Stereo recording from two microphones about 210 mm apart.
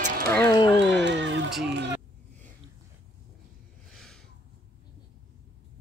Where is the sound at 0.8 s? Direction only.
55° right (ahead or behind).